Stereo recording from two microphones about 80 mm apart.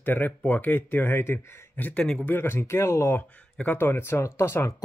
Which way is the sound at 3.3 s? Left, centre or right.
Centre.